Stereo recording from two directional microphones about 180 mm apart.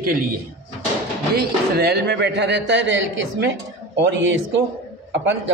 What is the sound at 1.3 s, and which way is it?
A man's voice, 60° right (ahead or behind).